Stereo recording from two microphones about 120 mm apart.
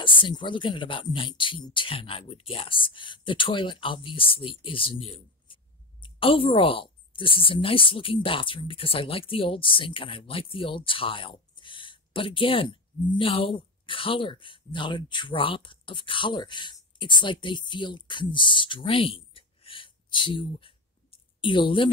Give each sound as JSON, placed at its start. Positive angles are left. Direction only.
{"t": 0.0, "sound": "a woman's voice", "side_deg": 45}